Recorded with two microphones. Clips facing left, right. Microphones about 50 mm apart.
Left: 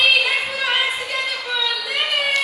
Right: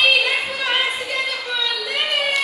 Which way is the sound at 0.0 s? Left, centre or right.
Centre.